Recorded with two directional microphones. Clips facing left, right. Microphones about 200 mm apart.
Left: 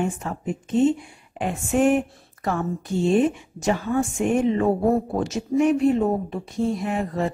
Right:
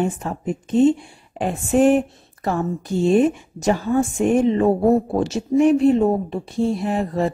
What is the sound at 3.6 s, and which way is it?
Speech, 40° right (ahead or behind).